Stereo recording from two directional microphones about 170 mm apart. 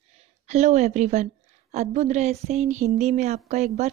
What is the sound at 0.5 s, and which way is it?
A woman's voice, 40° right (ahead or behind).